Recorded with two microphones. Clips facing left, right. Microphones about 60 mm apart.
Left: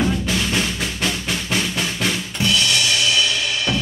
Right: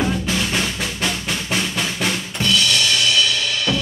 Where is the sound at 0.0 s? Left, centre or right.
Centre.